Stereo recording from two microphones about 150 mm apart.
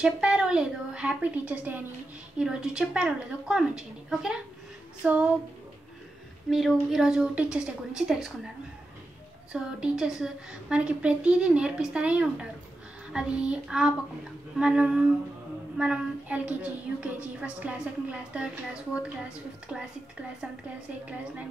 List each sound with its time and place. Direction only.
0.0 s a woman's voice: 5° right (ahead or behind)
6.5 s a woman's voice: centre (ahead or behind)
9.5 s a woman's voice: 5° right (ahead or behind)